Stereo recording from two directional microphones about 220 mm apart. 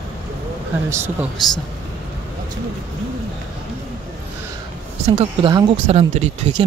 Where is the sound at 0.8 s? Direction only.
10° right (ahead or behind).